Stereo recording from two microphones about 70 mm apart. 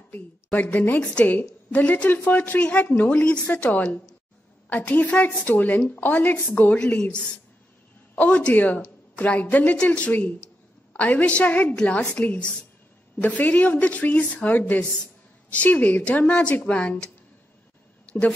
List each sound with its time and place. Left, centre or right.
0.1 s a woman's voice: left
6.8 s a woman's voice: centre
18.1 s a sound: centre